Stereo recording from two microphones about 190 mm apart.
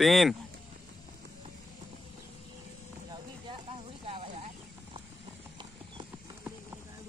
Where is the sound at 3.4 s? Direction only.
25° right (ahead or behind).